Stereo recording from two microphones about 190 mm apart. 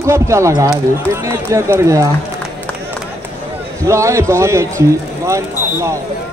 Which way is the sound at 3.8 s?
15° right (ahead or behind).